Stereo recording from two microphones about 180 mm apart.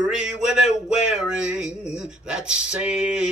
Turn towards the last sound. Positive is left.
turn(degrees=-5)  # may be behind; listen again after turning